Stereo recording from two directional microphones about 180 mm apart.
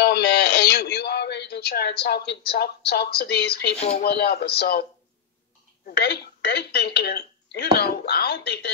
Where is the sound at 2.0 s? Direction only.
65° left (ahead or behind).